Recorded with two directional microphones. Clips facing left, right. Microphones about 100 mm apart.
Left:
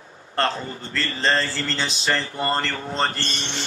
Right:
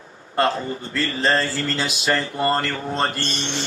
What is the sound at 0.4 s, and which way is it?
A man's voice, 5° right (ahead or behind).